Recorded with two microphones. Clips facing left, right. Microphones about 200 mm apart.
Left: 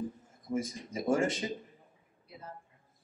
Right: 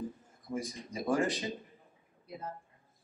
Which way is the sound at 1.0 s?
25° left (ahead or behind).